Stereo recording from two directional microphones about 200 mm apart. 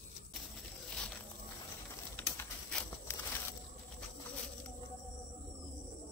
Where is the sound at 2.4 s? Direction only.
10° left (ahead or behind).